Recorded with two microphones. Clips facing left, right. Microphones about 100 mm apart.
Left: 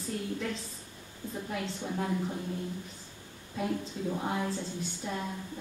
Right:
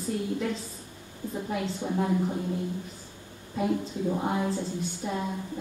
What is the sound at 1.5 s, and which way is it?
Speech, 10° right (ahead or behind).